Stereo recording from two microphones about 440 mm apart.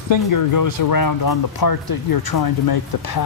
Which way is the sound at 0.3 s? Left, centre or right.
Left.